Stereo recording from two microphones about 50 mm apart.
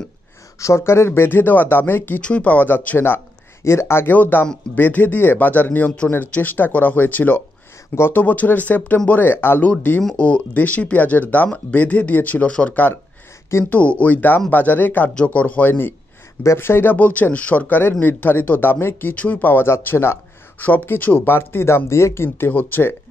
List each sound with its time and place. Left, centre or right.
0.6 s speech: left
2.2 s speech: left
3.6 s speech: left
4.1 s speech: left
9.7 s speech: left
12.4 s speech: centre; by 15.9 s left
16.5 s speech: left
16.9 s speech: left
19.1 s speech: left
19.4 s speech: left
20.5 s speech: left
22.5 s speech: left